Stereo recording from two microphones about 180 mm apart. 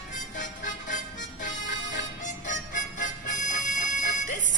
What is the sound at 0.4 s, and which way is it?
Music, 45° left (ahead or behind).